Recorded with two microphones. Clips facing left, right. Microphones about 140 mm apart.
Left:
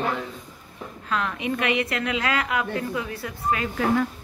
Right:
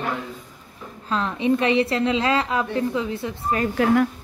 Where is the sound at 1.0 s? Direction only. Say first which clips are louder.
Right 5 dB; 30° right (ahead or behind).